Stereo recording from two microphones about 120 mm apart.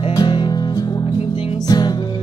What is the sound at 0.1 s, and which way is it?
Music, 35° left (ahead or behind).